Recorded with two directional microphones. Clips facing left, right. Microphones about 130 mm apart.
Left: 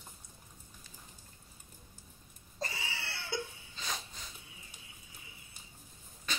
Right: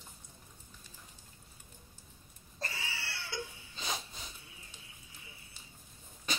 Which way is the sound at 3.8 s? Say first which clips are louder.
Right 2 dB; 15° right (ahead or behind).